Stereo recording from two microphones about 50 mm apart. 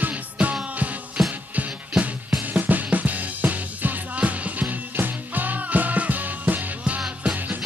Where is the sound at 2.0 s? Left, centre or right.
Right.